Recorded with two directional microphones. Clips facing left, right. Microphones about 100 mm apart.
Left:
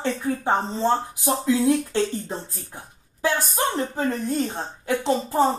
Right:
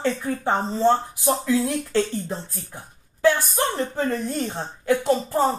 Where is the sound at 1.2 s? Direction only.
20° left (ahead or behind).